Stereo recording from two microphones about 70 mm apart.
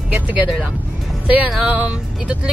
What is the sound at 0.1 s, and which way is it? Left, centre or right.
Speech, right.